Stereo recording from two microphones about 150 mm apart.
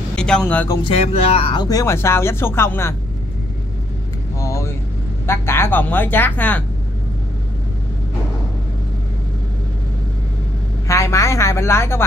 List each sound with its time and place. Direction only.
0.1 s speech: 5° left (ahead or behind)
0.8 s speech: 40° left (ahead or behind); by 3.0 s 15° left (ahead or behind)
4.4 s vehicle: 20° left (ahead or behind)
5.2 s speech: 15° left (ahead or behind)
10.9 s speech: 20° left (ahead or behind)